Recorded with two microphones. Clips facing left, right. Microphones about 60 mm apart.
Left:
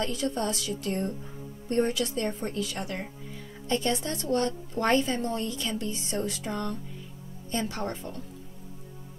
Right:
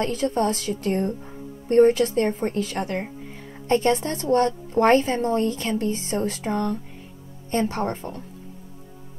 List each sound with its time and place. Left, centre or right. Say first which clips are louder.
0.0 s a woman's voice: right 7 dB; right